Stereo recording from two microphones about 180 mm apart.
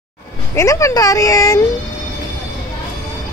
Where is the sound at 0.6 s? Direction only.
15° left (ahead or behind).